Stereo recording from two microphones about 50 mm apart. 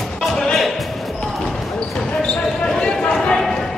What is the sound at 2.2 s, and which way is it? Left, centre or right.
Basketball bounce, centre.